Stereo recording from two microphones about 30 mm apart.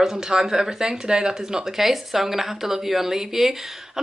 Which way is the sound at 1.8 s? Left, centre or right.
Centre.